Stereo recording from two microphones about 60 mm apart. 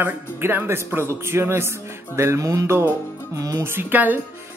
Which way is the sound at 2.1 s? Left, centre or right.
Right.